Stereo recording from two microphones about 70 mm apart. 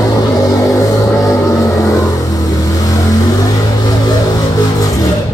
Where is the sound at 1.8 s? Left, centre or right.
Left.